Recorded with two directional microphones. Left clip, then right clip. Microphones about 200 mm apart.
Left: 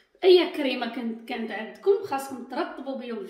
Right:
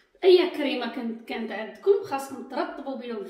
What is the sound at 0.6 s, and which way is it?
A woman's voice, 25° left (ahead or behind).